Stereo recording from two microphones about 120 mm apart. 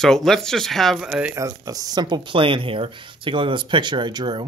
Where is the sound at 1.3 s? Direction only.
30° right (ahead or behind).